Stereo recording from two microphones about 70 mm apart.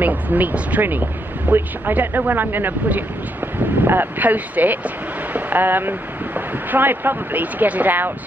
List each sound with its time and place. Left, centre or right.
0.0 s speech: right